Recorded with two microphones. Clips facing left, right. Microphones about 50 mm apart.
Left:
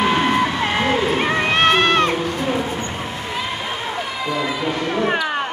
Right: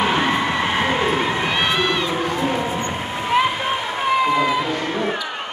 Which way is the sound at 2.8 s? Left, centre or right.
Right.